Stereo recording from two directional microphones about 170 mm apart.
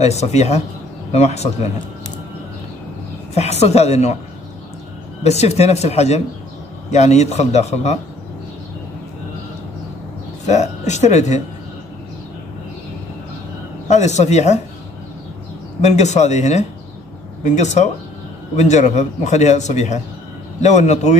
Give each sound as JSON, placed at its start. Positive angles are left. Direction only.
{"t": 0.0, "sound": "speech", "side_deg": 40}
{"t": 3.3, "sound": "speech", "side_deg": 40}
{"t": 5.2, "sound": "speech", "side_deg": 40}
{"t": 10.4, "sound": "a man's voice", "side_deg": 45}
{"t": 13.8, "sound": "a man's voice", "side_deg": 40}
{"t": 15.8, "sound": "a man's voice", "side_deg": 40}